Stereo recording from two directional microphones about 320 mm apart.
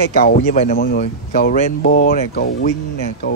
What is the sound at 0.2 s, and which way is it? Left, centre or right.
Speech, left.